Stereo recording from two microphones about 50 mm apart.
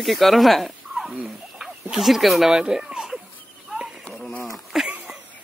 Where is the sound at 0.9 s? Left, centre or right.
Centre.